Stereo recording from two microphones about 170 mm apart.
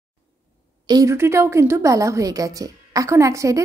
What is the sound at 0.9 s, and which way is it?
A woman's voice, 20° right (ahead or behind).